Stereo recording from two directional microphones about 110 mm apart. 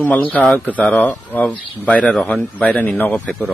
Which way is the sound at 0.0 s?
15° left (ahead or behind).